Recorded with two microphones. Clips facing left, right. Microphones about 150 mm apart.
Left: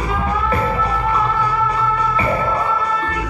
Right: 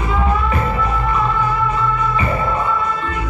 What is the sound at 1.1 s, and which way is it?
Music, 35° left (ahead or behind).